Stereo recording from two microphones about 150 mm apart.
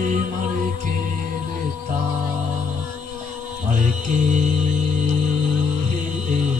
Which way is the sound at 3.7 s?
55° right (ahead or behind).